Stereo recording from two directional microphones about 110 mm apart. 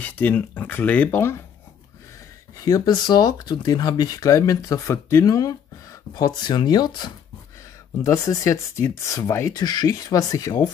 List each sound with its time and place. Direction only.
0.0 s speech: 15° left (ahead or behind)
2.5 s speech: 35° left (ahead or behind)
8.0 s speech: 30° left (ahead or behind)